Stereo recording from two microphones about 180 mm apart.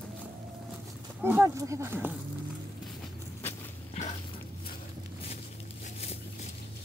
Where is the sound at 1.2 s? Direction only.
15° right (ahead or behind).